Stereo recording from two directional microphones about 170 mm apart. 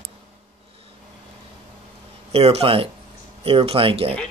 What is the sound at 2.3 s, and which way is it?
Speech, 35° right (ahead or behind).